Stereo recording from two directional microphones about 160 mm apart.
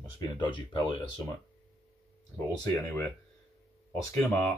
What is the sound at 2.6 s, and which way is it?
Speech, 15° left (ahead or behind).